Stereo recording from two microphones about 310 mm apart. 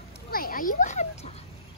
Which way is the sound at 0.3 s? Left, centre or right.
Left.